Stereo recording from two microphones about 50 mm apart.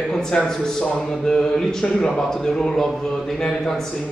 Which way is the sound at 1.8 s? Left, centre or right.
Left.